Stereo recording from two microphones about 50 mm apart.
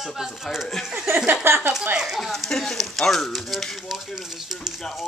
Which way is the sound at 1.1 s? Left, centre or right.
Right.